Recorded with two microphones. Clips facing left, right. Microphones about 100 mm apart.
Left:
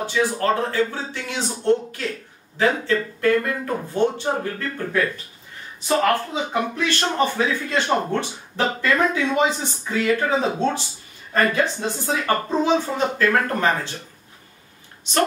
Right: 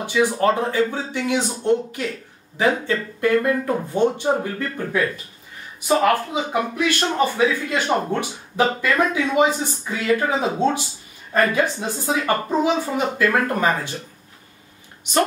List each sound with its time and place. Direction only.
0.0 s speech: 15° right (ahead or behind)
6.5 s speech: 10° right (ahead or behind)